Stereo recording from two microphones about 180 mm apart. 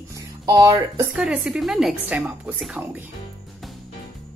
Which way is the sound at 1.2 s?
5° right (ahead or behind).